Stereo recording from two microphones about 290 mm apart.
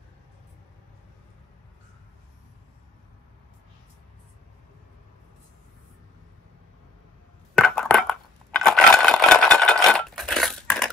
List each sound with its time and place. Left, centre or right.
7.5 s crushing: centre